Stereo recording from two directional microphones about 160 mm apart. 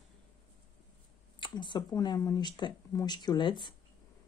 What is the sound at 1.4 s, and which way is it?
Speech, 30° left (ahead or behind).